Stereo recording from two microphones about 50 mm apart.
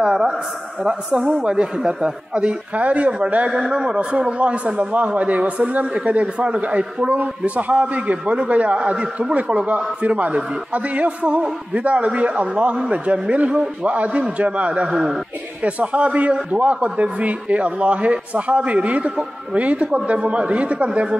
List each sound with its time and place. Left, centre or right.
0.0 s a woman's voice: centre
14.9 s a man's voice: centre
15.6 s a man's voice: right